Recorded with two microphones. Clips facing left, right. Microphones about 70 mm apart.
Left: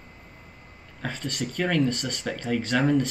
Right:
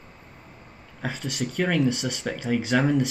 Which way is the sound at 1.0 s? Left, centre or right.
Centre.